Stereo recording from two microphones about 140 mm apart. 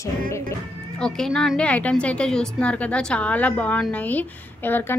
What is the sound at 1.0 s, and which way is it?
A woman's voice, 5° left (ahead or behind).